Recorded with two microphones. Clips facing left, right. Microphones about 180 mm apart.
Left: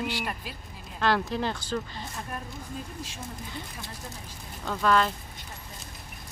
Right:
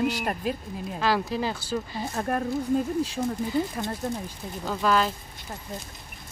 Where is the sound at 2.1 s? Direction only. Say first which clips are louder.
Right 11 dB; 55° right (ahead or behind).